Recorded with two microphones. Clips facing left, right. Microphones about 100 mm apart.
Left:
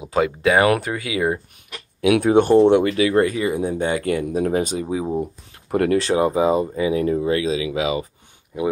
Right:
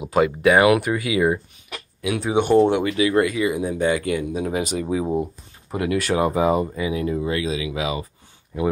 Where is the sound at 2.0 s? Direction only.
65° left (ahead or behind).